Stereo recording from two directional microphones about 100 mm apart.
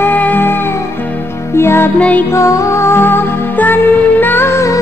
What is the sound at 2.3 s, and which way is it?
Music, 30° left (ahead or behind).